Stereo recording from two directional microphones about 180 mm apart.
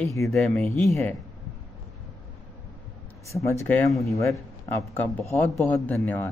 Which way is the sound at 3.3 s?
15° left (ahead or behind).